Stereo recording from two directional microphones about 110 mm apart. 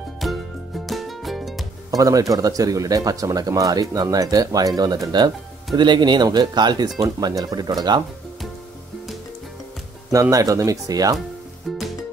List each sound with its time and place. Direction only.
0.2 s music: centre (ahead or behind)
1.9 s speech: 35° right (ahead or behind)
10.3 s speech: 30° right (ahead or behind)